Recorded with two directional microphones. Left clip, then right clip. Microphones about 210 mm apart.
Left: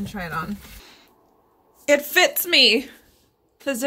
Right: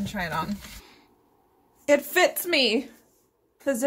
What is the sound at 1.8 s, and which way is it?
A woman's voice, 5° right (ahead or behind).